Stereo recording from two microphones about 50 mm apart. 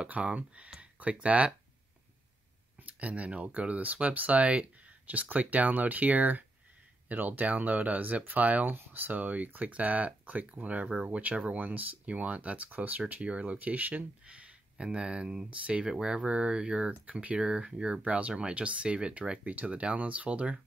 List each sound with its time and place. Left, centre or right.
0.0 s speech: right
2.8 s speech: right
8.7 s speech: right